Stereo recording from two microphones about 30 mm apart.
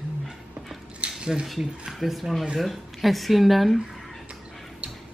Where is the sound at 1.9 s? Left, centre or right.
Centre.